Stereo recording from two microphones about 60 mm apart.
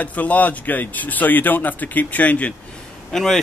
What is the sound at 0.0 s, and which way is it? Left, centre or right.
A man's voice, left.